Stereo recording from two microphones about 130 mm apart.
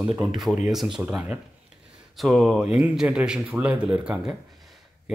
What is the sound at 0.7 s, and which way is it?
Speech, centre (ahead or behind).